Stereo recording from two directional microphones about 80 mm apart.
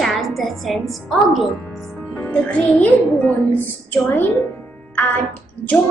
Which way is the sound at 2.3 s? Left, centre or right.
Centre.